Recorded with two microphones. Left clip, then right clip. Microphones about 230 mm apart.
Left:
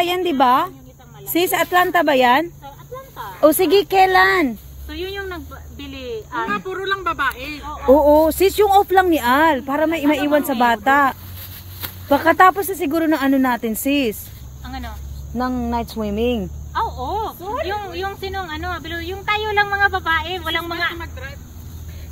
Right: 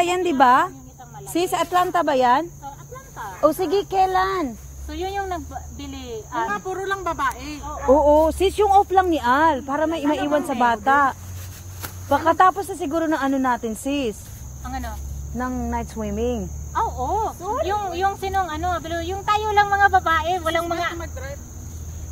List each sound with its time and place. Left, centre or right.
0.0 s speech: centre
1.3 s speech: left
3.3 s speech: left
4.9 s speech: right
7.9 s speech: left
14.6 s speech: centre
15.3 s speech: left
16.7 s speech: centre
17.6 s speech: right